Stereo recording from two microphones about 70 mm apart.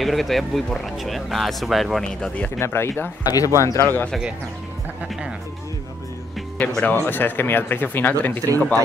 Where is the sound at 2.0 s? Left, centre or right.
Centre.